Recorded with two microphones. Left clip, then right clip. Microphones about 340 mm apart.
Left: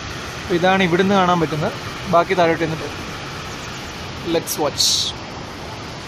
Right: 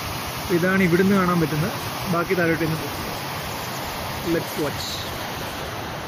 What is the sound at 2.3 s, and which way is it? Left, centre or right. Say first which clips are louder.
Speech: left 5 dB; left.